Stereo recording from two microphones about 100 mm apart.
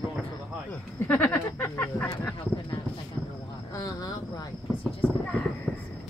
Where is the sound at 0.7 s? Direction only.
15° left (ahead or behind).